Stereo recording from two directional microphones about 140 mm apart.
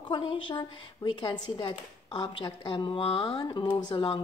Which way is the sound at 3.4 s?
30° left (ahead or behind).